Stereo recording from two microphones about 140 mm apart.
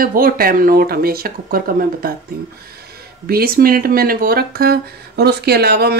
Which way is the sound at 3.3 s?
90° right.